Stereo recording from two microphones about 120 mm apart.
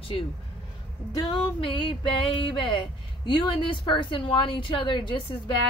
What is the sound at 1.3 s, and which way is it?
A woman's voice, 45° left (ahead or behind).